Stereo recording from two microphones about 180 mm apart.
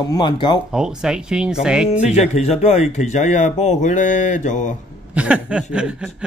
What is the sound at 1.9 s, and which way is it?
Speech, 40° left (ahead or behind).